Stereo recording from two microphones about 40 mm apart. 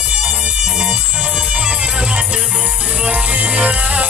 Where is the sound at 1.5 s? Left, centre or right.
Right.